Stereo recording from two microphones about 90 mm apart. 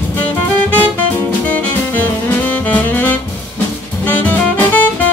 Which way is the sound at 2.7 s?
20° left (ahead or behind).